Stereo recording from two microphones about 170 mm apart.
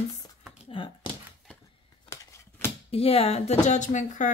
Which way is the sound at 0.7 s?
30° left (ahead or behind).